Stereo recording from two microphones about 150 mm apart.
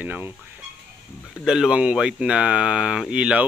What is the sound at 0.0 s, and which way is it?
Speech, 10° right (ahead or behind).